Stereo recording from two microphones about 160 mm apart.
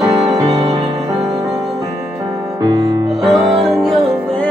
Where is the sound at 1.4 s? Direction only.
20° right (ahead or behind).